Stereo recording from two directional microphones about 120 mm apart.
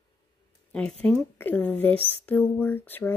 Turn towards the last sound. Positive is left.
turn(degrees=15)  # may be behind; listen again after turning